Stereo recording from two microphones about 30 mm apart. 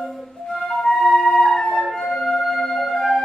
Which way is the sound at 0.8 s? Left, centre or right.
Centre.